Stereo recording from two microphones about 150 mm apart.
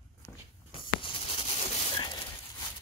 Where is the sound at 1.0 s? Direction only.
35° left (ahead or behind).